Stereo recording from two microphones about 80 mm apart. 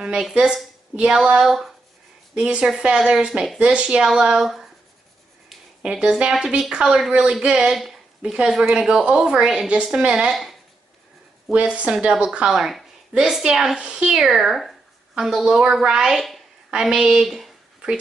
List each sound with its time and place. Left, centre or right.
0.0 s speech: centre
5.8 s speech: centre
11.5 s a woman's voice: centre